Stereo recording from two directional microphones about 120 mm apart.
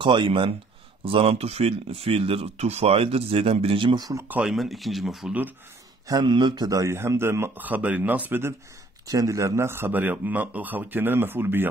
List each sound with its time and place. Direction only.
0.0 s speech: 40° right (ahead or behind)
4.3 s speech: 5° right (ahead or behind)
6.0 s a man's voice: 35° right (ahead or behind); by 8.5 s 20° right (ahead or behind)
9.0 s a man's voice: 30° right (ahead or behind)